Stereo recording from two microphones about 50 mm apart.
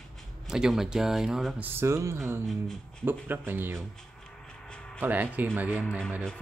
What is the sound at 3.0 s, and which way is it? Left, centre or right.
Speech, right.